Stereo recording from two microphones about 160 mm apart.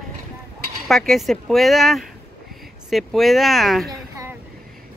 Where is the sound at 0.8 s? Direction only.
Centre (ahead or behind).